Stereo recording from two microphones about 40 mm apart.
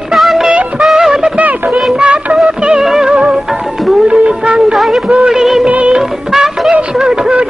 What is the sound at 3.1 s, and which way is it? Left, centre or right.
Music, right.